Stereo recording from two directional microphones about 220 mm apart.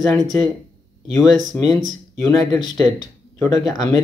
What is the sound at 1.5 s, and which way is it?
Speech, centre (ahead or behind).